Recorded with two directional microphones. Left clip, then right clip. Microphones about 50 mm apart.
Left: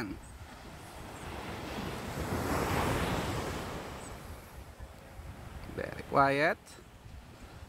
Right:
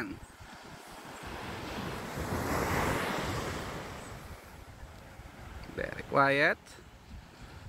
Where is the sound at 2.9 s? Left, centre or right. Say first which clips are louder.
Right 1 dB; right.